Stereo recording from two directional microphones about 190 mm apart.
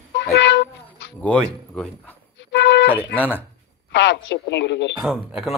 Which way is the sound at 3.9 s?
70° left (ahead or behind).